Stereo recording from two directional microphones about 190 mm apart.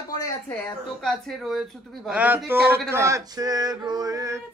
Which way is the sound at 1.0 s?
Centre (ahead or behind).